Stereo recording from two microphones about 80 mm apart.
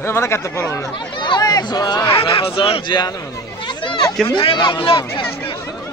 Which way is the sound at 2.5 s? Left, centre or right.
Left.